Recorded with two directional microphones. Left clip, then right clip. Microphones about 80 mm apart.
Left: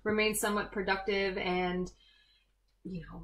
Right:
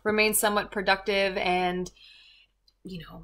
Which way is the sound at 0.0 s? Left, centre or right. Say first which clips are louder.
Right 6 dB; right.